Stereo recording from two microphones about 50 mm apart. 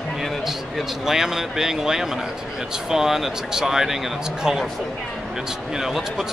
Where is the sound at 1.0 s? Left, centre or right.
Centre.